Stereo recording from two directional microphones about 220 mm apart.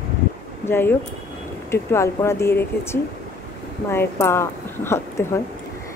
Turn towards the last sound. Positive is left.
turn(degrees=10)  # may be behind; listen again after turning